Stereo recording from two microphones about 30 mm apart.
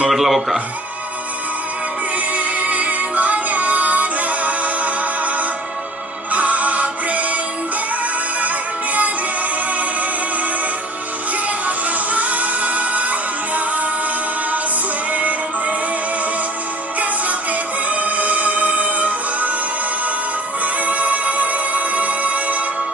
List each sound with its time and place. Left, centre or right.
0.1 s speech: centre
2.3 s music: right
8.4 s music: right
11.6 s music: right
17.0 s music: right
20.6 s music: right